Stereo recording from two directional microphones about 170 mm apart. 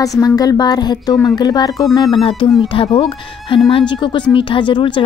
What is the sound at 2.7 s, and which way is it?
A woman's voice, 35° left (ahead or behind).